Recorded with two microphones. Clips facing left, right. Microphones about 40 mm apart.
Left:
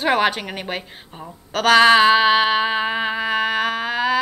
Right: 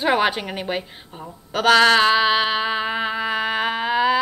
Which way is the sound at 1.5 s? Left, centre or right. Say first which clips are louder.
Left 1 dB; centre.